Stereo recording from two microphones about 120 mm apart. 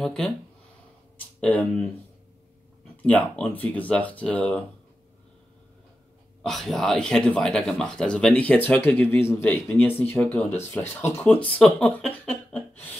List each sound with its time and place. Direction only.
0.0 s speech: 5° left (ahead or behind)
1.4 s speech: 10° left (ahead or behind)
3.0 s speech: 10° left (ahead or behind)
6.4 s speech: centre (ahead or behind)